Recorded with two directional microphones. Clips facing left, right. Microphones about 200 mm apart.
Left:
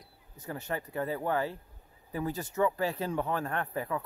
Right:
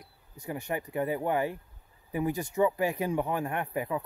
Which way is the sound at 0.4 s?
15° right (ahead or behind).